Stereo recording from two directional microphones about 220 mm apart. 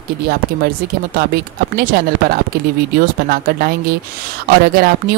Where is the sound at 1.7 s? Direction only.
45° right (ahead or behind).